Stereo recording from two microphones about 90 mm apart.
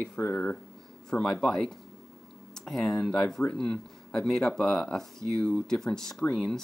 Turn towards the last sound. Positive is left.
turn(degrees=5)  # may be behind; listen again after turning